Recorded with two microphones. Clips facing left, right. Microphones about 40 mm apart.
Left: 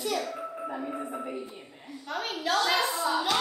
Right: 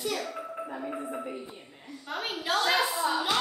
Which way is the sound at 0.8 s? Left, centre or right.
Centre.